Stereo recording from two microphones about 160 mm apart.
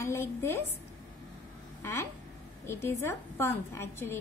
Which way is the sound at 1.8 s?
15° left (ahead or behind).